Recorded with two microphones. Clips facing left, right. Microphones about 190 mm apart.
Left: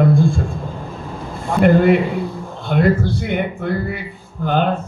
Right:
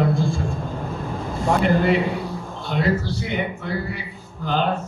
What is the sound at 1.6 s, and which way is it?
A man's voice, 55° left (ahead or behind).